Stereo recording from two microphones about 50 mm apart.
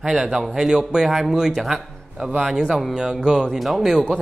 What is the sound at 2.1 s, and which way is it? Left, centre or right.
A man's voice, centre.